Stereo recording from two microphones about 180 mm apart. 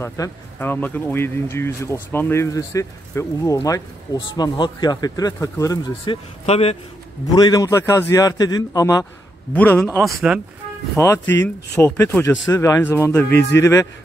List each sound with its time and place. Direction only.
0.0 s speech: 15° left (ahead or behind)
6.4 s a man's voice: 35° left (ahead or behind)
7.3 s a man's voice: 20° left (ahead or behind)
9.5 s speech: 10° left (ahead or behind)
10.3 s speech: 5° right (ahead or behind)
11.0 s speech: 15° left (ahead or behind)